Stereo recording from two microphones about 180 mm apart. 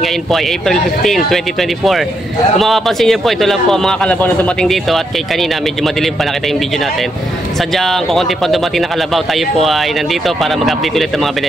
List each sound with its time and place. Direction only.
0.0 s speech: centre (ahead or behind)
7.7 s speech: centre (ahead or behind)